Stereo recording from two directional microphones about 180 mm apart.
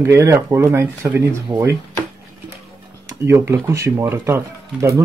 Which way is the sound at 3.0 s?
15° right (ahead or behind).